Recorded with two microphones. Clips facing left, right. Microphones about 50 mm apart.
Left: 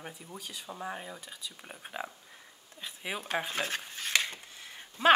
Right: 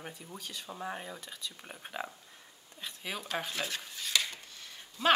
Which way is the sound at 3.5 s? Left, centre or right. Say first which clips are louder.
Left 3 dB; left.